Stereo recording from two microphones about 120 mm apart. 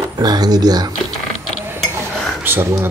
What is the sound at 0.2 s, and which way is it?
Speech, 35° right (ahead or behind).